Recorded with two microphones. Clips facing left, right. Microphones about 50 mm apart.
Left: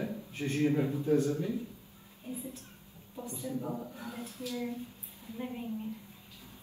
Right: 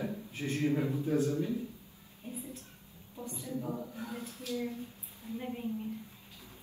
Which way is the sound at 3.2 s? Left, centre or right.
Left.